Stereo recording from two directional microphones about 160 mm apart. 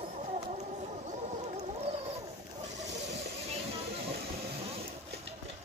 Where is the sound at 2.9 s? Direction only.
90° right.